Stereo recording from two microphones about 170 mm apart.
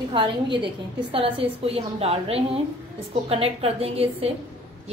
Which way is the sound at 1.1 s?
35° right (ahead or behind).